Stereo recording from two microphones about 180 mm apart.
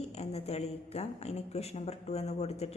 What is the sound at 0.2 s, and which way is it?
Speech, 35° left (ahead or behind).